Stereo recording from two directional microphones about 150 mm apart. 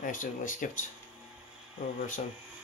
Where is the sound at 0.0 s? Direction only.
60° left (ahead or behind).